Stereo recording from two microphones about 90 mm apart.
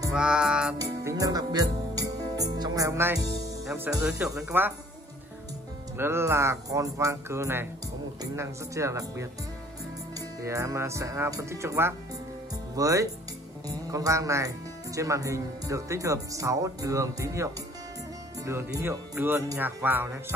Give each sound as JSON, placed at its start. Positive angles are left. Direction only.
{"t": 0.1, "sound": "music", "side_deg": -10}
{"t": 0.7, "sound": "speech", "side_deg": -40}
{"t": 3.9, "sound": "music", "side_deg": -15}
{"t": 4.3, "sound": "speech", "side_deg": -35}
{"t": 5.9, "sound": "speech", "side_deg": -30}